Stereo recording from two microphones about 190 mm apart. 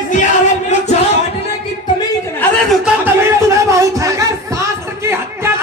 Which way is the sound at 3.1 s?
15° right (ahead or behind).